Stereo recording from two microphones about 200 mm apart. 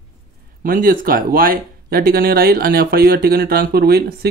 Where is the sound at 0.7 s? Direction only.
45° right (ahead or behind).